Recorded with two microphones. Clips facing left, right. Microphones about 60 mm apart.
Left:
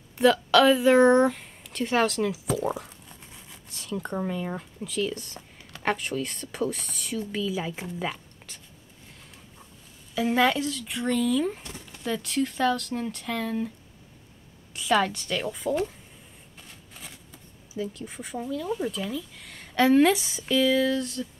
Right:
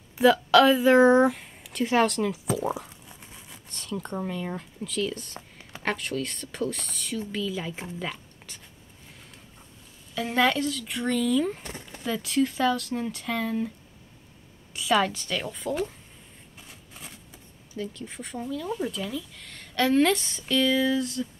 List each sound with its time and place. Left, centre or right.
0.2 s speech: centre
8.0 s a sound: centre
10.1 s speech: centre
11.6 s speech: right
12.0 s speech: centre
14.7 s speech: centre
16.5 s a sound: centre
17.7 s speech: centre